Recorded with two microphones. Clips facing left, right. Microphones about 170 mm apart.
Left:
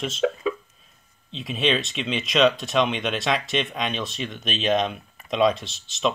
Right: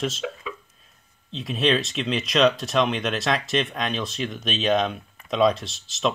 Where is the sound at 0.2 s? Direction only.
45° left (ahead or behind).